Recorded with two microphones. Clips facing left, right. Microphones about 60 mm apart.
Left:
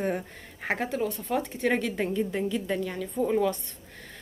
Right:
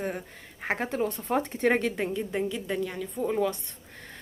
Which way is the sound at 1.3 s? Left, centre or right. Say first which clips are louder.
Right 2 dB; right.